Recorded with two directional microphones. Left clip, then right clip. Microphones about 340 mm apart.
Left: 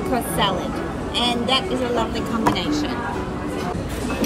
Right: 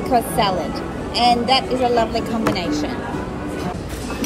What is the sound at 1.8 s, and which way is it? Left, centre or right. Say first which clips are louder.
Speech: right 5 dB; centre.